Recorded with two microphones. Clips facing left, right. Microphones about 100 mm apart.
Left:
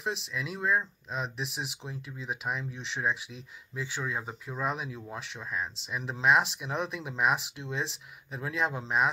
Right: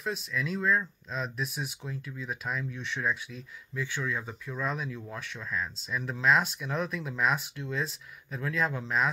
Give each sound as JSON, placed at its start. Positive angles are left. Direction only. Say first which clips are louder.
{"t": 0.4, "sound": "speech", "louder": "right 2 dB", "side_deg": 15}